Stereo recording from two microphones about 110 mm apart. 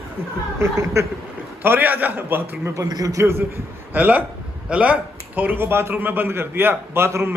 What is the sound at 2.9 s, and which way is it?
A man's voice, 35° right (ahead or behind).